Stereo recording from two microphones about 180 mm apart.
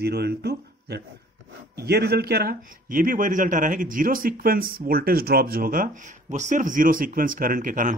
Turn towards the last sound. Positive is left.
turn(degrees=-45)  # may be behind; listen again after turning